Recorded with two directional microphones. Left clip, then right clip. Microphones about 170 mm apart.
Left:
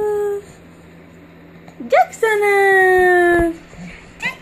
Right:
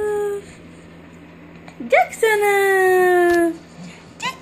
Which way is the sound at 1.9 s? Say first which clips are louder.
Left 1 dB; 5° right (ahead or behind).